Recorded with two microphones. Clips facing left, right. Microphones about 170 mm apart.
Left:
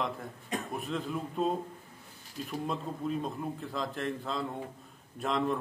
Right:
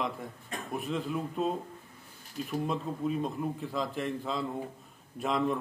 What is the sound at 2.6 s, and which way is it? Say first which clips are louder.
A man's voice: right 2 dB; centre (ahead or behind).